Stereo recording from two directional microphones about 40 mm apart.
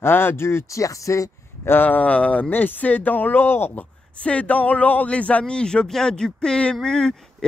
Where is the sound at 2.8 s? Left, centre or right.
Left.